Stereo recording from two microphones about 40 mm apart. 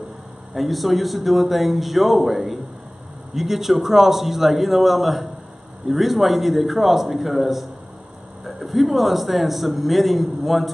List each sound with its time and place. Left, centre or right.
0.6 s a man's voice: centre